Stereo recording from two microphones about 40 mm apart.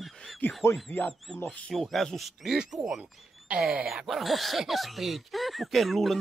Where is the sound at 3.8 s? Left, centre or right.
Right.